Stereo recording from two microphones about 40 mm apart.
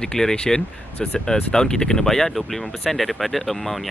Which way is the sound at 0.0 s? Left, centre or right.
Centre.